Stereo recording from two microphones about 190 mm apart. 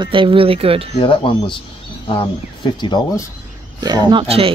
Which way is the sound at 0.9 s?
25° left (ahead or behind).